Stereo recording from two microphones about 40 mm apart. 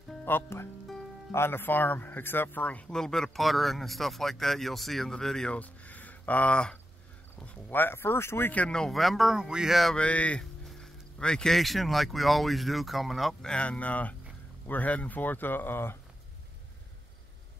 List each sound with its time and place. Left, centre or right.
0.2 s speech: left
2.9 s speech: centre
3.3 s speech: centre
5.1 s speech: centre
5.5 s speech: left
6.5 s speech: left
7.7 s speech: left
8.6 s speech: centre
8.9 s speech: centre
9.3 s speech: centre
9.9 s speech: left
10.8 s a sound: left
11.5 s speech: centre
13.4 s speech: left